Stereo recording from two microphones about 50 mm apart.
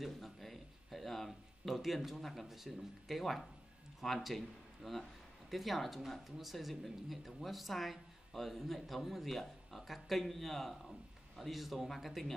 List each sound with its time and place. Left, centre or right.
0.0 s speech: centre